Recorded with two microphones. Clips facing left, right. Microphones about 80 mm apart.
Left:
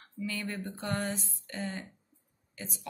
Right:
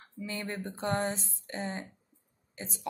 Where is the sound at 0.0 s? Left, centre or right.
Right.